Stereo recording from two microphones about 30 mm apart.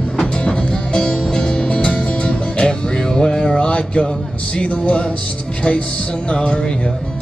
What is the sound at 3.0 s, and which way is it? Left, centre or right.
Music, centre.